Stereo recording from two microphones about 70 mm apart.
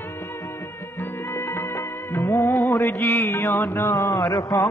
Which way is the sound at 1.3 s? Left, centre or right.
Left.